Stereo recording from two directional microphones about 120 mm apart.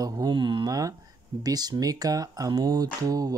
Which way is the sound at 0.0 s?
35° right (ahead or behind).